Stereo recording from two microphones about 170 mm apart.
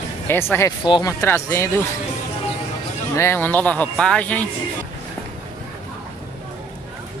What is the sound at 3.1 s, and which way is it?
Speech, 15° left (ahead or behind).